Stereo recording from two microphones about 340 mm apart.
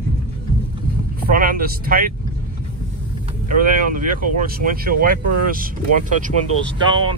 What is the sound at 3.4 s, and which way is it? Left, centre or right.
Speech, right.